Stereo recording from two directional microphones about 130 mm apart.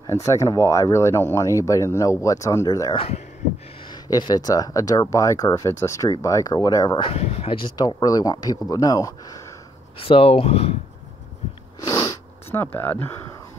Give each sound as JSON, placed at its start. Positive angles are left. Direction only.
{"t": 0.0, "sound": "speech", "side_deg": 20}
{"t": 7.0, "sound": "speech", "side_deg": 50}
{"t": 9.9, "sound": "speech", "side_deg": 45}
{"t": 11.8, "sound": "sniff", "side_deg": 30}
{"t": 12.4, "sound": "speech", "side_deg": 15}